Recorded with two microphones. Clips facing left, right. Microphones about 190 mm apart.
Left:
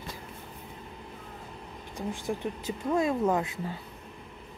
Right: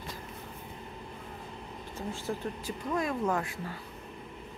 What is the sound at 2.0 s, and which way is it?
Speech, 15° left (ahead or behind).